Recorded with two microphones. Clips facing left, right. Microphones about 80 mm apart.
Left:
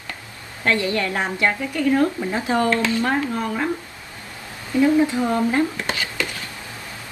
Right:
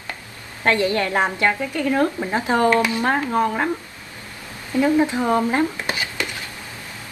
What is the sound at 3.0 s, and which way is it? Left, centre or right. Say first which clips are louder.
Speech: right 3 dB; right.